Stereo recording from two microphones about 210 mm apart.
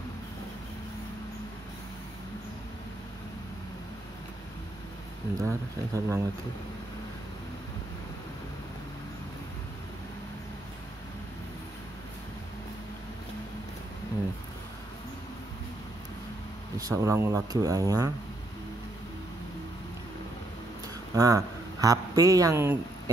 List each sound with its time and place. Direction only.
5.4 s speech: 15° right (ahead or behind)
16.7 s speech: 15° right (ahead or behind)
21.1 s speech: 15° right (ahead or behind)